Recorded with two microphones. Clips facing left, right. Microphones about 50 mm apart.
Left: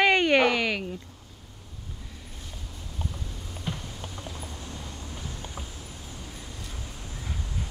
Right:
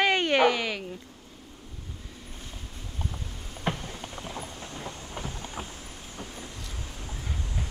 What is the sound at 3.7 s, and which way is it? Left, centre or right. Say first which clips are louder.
Clip-clop: right 5 dB; right.